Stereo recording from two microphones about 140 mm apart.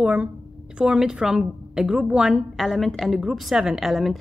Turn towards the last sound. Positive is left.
turn(degrees=0)  # may be behind; listen again after turning